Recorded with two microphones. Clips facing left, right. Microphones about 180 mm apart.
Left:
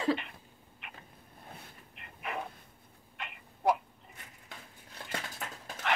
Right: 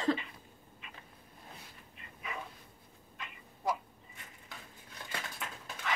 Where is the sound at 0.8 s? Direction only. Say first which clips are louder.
Left 3 dB; 65° left (ahead or behind).